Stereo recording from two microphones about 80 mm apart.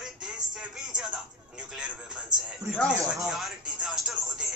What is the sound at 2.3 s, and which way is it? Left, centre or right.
Speech, right.